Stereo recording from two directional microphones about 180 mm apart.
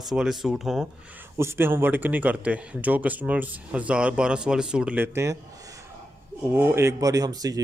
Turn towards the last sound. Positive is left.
turn(degrees=-20)  # may be behind; listen again after turning